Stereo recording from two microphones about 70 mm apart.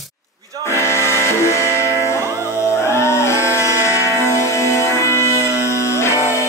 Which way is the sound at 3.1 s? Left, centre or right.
Left.